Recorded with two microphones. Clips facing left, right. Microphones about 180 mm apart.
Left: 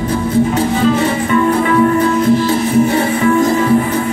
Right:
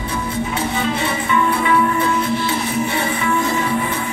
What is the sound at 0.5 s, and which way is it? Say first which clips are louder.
Music: left 8 dB; 40° left (ahead or behind).